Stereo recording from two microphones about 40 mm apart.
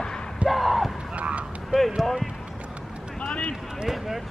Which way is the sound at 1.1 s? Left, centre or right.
Right.